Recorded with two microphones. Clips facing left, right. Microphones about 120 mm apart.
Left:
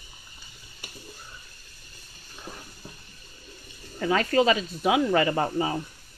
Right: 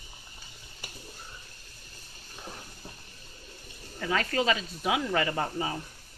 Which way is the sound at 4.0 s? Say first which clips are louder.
Left 6 dB; 35° left (ahead or behind).